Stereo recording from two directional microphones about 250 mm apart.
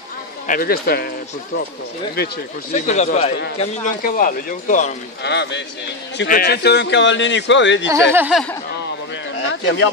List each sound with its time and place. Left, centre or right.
0.5 s speech: left
2.7 s speech: left
5.2 s speech: left
7.9 s speech: centre
9.5 s speech: left